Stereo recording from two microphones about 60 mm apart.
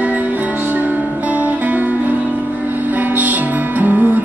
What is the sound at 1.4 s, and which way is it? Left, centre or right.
Music, right.